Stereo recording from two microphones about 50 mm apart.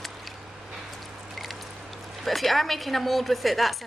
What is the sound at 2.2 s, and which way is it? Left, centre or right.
A woman's voice, centre.